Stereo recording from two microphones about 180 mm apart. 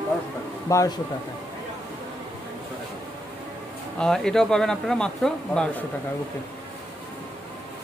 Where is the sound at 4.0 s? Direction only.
5° left (ahead or behind).